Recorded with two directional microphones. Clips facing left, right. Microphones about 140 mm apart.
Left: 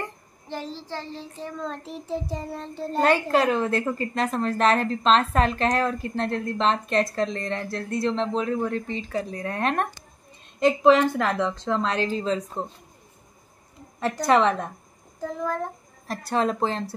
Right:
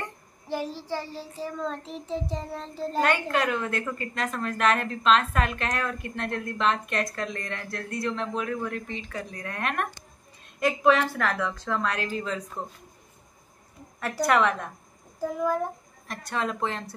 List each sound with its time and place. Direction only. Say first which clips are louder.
0.5 s child singing: right 3 dB; 10° right (ahead or behind)
3.0 s a woman's voice: left 5 dB; 30° left (ahead or behind)
14.2 s a woman's voice: left 3 dB; 30° left (ahead or behind)
15.1 s speech: right 2 dB; 10° right (ahead or behind)
16.1 s a woman's voice: left 6 dB; 35° left (ahead or behind)